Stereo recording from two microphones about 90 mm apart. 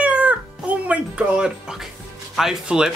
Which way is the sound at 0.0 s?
15° right (ahead or behind).